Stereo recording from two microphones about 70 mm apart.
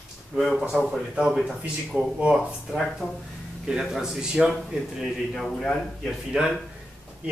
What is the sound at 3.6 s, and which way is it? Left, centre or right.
A man's voice, centre.